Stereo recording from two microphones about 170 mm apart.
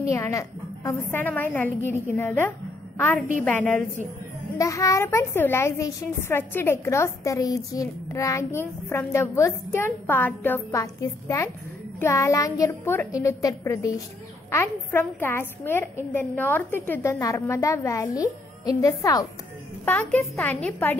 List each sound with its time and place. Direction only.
0.1 s a child's voice: 15° left (ahead or behind)
4.6 s a child's voice: 20° left (ahead or behind)